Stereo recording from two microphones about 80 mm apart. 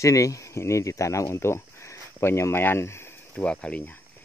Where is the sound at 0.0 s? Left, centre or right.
Left.